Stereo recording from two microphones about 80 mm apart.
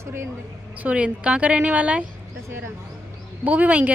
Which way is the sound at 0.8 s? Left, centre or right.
Centre.